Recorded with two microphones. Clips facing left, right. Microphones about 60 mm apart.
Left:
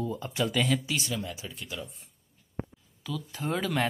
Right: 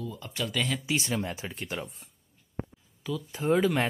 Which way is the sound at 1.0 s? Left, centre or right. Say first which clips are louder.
Right 3 dB; right.